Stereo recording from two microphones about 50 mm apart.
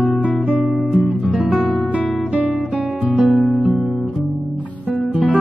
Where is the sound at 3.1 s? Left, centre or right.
Centre.